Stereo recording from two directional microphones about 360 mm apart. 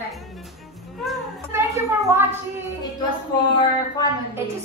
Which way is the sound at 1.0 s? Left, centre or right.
Centre.